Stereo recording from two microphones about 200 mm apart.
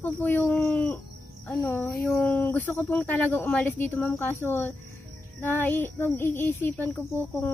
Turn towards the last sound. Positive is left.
turn(degrees=10)  # may be behind; listen again after turning